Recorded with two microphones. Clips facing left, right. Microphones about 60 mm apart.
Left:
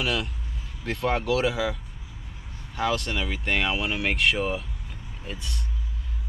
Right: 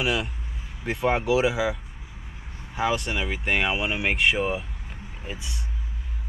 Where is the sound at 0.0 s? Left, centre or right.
Centre.